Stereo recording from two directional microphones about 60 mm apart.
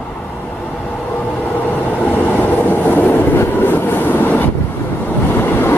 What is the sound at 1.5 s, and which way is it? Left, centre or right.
Train, left.